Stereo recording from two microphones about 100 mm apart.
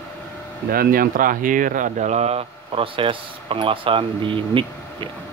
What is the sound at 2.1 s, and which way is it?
Speech, 90° right.